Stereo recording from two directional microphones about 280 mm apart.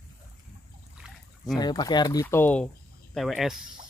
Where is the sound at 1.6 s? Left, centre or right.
Centre.